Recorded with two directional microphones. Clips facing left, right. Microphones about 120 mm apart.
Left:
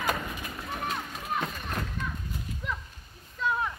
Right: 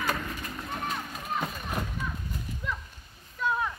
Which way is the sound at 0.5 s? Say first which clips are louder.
Left 1 dB; centre (ahead or behind).